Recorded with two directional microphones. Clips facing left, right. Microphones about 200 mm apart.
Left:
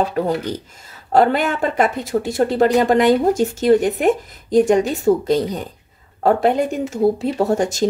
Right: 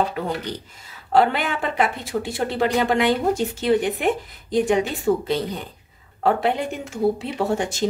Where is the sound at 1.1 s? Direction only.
45° left (ahead or behind).